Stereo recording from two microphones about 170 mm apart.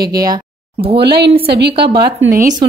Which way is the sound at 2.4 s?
25° right (ahead or behind).